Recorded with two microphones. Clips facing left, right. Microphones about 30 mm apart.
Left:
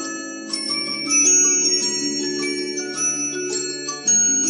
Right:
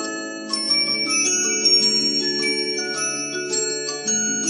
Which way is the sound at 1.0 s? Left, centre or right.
Right.